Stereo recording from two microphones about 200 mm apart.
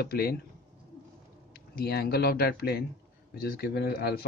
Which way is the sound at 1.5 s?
50° left (ahead or behind).